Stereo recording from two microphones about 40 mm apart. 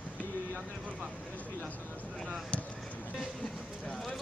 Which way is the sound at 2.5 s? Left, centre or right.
Left.